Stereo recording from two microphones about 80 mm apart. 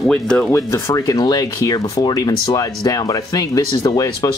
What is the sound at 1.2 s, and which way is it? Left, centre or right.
Speech, left.